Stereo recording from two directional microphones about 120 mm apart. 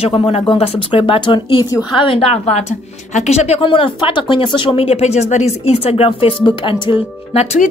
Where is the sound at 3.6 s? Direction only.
45° left (ahead or behind).